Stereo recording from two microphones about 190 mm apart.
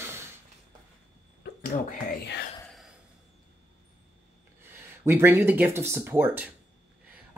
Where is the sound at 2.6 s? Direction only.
Centre (ahead or behind).